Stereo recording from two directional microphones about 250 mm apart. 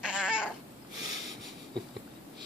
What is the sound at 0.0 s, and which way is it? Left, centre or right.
Babbling, centre.